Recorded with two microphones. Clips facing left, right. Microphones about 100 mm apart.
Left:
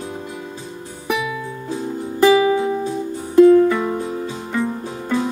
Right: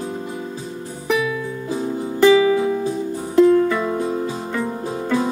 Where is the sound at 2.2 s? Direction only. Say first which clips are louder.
Even; 5° left (ahead or behind).